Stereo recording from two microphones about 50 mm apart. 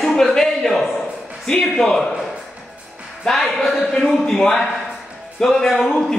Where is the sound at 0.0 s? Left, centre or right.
Centre.